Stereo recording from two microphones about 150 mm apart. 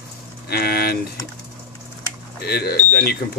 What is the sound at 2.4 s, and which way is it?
Speech, 90° left.